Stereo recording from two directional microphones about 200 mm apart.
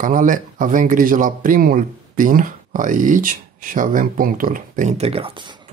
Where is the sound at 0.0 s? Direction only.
40° right (ahead or behind).